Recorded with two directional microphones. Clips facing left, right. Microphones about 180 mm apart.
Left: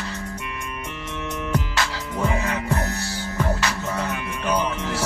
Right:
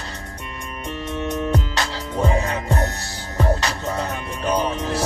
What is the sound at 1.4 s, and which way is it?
Music, 30° right (ahead or behind).